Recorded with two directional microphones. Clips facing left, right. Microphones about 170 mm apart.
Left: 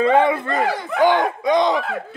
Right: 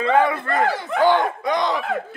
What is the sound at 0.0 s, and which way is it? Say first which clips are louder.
Speech: left 3 dB; 25° left (ahead or behind).